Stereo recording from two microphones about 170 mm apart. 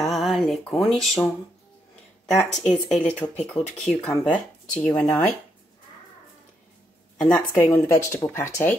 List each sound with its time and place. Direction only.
0.0 s a sound: centre (ahead or behind)
2.2 s speech: centre (ahead or behind)
7.2 s a woman's voice: 5° left (ahead or behind)
7.5 s speech: 15° left (ahead or behind)